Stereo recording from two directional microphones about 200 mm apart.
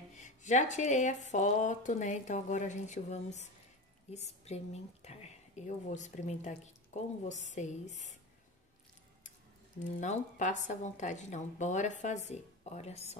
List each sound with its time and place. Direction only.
0.2 s a woman's voice: 35° left (ahead or behind)
9.8 s speech: 35° left (ahead or behind)